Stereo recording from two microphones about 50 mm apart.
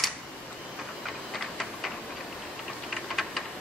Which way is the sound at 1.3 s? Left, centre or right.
Centre.